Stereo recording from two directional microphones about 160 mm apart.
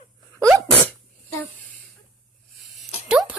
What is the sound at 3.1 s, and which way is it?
Music, 5° right (ahead or behind).